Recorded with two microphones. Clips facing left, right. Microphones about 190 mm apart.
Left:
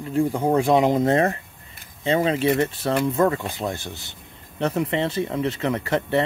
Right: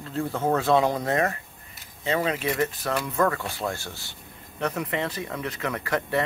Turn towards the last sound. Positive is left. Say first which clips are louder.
# left 4 dB
turn(degrees=25)  # may be behind; listen again after turning